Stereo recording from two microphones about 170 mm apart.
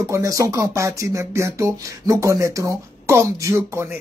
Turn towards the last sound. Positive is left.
turn(degrees=-15)  # may be behind; listen again after turning